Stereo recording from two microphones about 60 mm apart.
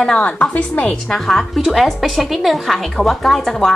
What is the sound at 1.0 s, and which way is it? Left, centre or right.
A woman's voice, centre.